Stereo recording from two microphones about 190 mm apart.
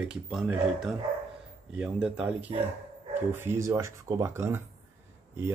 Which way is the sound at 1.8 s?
5° right (ahead or behind).